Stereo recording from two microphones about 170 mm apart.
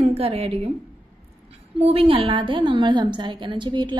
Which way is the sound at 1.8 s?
35° right (ahead or behind).